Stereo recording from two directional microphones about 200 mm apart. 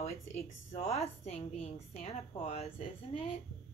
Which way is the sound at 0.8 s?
30° left (ahead or behind).